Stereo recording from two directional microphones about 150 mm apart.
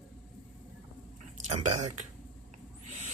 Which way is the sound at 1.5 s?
50° right (ahead or behind).